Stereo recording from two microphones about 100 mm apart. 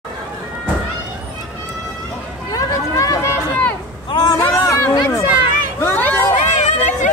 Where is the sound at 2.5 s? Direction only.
35° left (ahead or behind).